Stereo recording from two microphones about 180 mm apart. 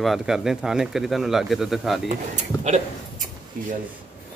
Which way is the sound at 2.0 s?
40° right (ahead or behind).